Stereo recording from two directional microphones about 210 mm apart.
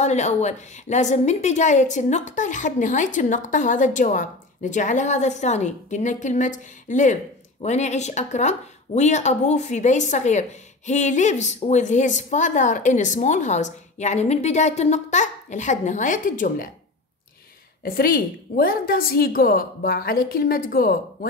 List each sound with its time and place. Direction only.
0.0 s a woman's voice: 35° left (ahead or behind)
17.8 s a woman's voice: 45° left (ahead or behind)